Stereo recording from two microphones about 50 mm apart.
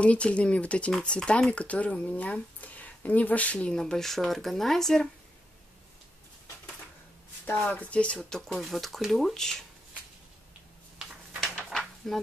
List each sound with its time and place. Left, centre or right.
0.0 s speech: left
3.5 s speech: centre
7.6 s speech: left
8.2 s speech: centre
8.5 s speech: centre
11.4 s a sound: centre